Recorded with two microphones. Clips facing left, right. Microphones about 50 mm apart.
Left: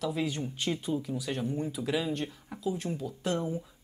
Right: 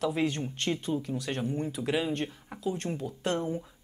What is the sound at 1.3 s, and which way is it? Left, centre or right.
Speech, right.